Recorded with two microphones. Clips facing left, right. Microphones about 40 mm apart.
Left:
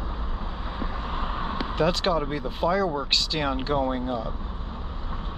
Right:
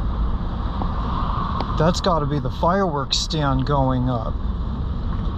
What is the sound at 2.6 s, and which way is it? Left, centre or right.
Speech, right.